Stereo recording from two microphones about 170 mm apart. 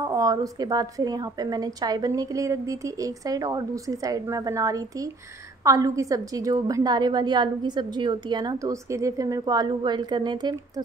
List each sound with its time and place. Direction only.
0.0 s a woman's voice: 20° right (ahead or behind)